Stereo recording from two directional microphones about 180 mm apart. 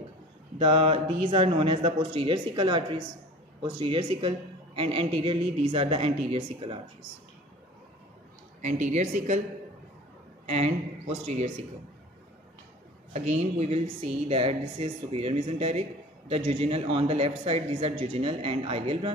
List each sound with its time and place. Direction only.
0.6 s speech: 30° right (ahead or behind)
8.5 s speech: 45° right (ahead or behind)
10.5 s speech: 35° right (ahead or behind)
13.1 s speech: 40° right (ahead or behind)